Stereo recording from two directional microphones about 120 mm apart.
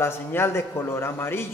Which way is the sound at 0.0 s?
20° left (ahead or behind).